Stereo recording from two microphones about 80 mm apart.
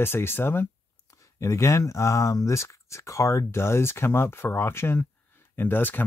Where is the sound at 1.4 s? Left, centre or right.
Left.